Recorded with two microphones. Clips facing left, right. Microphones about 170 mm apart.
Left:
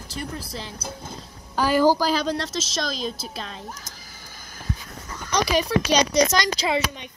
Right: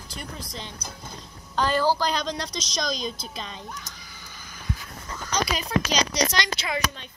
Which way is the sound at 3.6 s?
40° left (ahead or behind).